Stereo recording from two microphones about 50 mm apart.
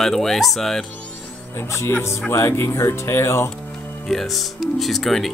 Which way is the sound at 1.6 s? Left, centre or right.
Left.